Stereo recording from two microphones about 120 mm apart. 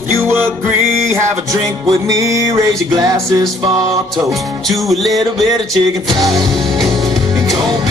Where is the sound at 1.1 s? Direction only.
30° right (ahead or behind).